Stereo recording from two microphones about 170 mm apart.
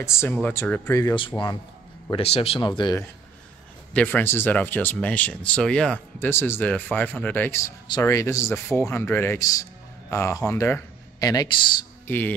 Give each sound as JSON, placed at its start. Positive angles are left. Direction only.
{"t": 0.0, "sound": "a man's voice", "side_deg": 15}
{"t": 2.0, "sound": "speech", "side_deg": 35}
{"t": 3.9, "sound": "a man's voice", "side_deg": 10}
{"t": 12.1, "sound": "a man's voice", "side_deg": 10}